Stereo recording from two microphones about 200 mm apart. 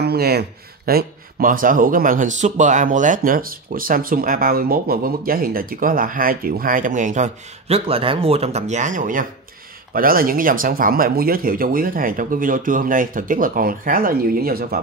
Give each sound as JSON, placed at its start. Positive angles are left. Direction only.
{"t": 0.0, "sound": "speech", "side_deg": -50}